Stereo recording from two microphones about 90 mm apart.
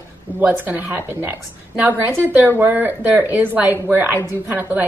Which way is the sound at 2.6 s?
20° right (ahead or behind).